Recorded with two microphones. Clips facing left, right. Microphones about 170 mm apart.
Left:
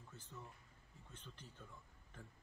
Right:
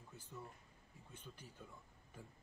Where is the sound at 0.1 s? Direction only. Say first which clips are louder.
Right 3 dB; 10° right (ahead or behind).